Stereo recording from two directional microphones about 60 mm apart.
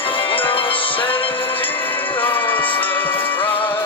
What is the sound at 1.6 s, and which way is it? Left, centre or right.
Music, left.